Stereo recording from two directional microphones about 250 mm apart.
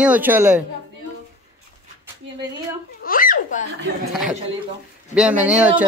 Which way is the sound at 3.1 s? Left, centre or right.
Left.